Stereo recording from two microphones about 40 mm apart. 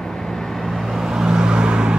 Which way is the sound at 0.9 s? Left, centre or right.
Centre.